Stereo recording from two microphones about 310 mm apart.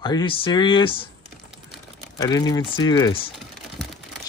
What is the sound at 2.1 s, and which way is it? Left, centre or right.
Speech, centre.